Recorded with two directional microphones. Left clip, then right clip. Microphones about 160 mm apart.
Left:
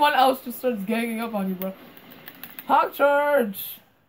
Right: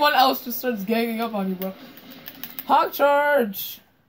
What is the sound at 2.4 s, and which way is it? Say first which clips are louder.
Speech: right 1 dB; 25° right (ahead or behind).